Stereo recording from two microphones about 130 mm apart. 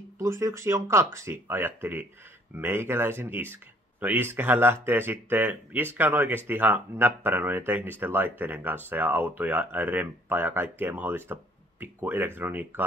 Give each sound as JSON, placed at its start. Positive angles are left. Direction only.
{"t": 0.2, "sound": "speech", "side_deg": -20}